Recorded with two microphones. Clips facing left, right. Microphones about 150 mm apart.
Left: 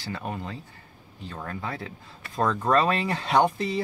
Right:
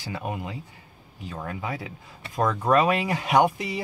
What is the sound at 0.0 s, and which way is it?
Speech, 15° right (ahead or behind).